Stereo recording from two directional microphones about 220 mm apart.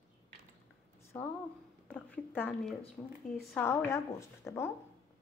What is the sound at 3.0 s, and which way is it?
Frying, 10° left (ahead or behind).